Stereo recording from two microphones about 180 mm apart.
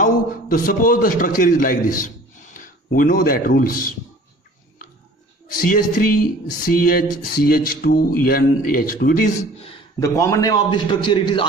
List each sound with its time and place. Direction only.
0.0 s a man's voice: 50° left (ahead or behind)
5.6 s speech: 50° left (ahead or behind)
9.9 s a man's voice: 15° left (ahead or behind)